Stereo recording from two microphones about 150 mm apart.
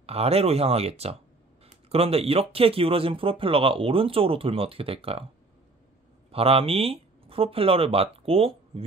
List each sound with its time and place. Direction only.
0.0 s speech: 40° right (ahead or behind)
6.3 s speech: 40° right (ahead or behind)